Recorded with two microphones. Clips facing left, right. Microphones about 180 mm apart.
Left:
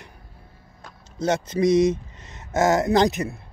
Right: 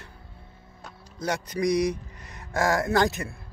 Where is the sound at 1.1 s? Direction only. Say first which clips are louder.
Left 6 dB; 25° left (ahead or behind).